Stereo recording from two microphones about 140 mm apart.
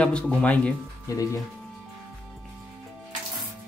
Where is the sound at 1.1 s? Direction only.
25° left (ahead or behind).